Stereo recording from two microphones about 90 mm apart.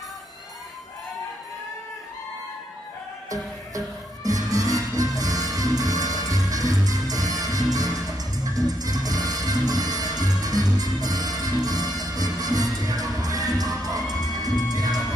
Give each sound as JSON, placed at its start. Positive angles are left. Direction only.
{"t": 3.7, "sound": "music", "side_deg": -40}